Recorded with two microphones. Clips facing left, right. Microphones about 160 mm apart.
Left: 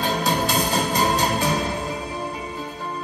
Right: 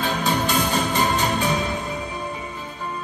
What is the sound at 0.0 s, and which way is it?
Music, 40° left (ahead or behind).